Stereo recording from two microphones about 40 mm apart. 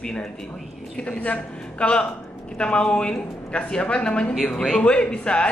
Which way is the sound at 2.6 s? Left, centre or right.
Left.